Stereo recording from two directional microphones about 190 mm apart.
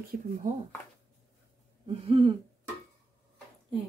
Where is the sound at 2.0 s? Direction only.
25° right (ahead or behind).